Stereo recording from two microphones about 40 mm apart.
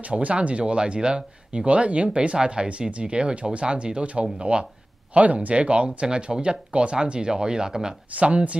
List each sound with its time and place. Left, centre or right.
0.0 s speech: right
1.7 s speech: right; by 7.9 s centre
8.2 s speech: right